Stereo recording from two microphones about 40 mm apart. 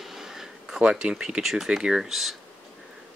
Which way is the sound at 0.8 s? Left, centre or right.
Right.